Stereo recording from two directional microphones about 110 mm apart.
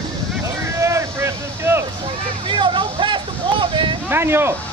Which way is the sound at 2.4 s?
50° right (ahead or behind).